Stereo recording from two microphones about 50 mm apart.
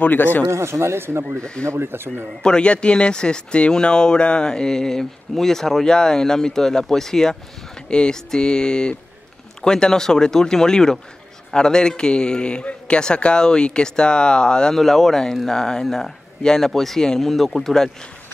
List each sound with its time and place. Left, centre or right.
0.0 s speech: left
0.5 s speech: right
1.4 s speech: centre
1.7 s speech: right
2.4 s speech: centre